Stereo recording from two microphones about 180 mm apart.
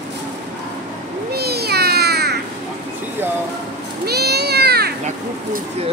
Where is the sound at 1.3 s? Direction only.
60° right (ahead or behind).